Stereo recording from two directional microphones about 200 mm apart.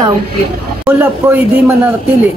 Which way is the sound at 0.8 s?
10° right (ahead or behind).